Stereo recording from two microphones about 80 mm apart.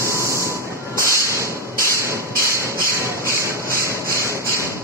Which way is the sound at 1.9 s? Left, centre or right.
Right.